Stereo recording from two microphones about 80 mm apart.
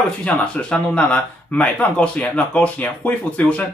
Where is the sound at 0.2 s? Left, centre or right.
Centre.